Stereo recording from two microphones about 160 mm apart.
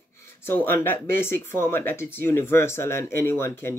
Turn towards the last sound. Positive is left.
turn(degrees=15)  # may be behind; listen again after turning